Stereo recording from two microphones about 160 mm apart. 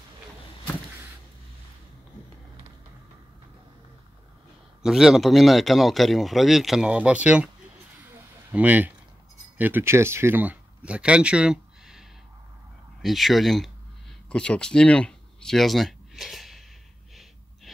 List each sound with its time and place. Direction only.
4.8 s speech: centre (ahead or behind)
8.5 s speech: 10° right (ahead or behind)
13.0 s speech: centre (ahead or behind)